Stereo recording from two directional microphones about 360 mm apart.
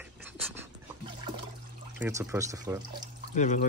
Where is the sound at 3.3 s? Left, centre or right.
Centre.